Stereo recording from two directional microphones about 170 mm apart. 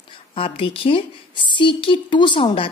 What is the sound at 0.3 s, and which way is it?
A woman's voice, 30° left (ahead or behind).